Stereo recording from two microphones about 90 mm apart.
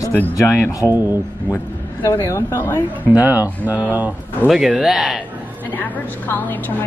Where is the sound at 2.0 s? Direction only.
35° left (ahead or behind).